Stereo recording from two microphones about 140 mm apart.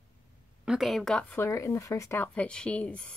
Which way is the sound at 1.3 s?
20° left (ahead or behind).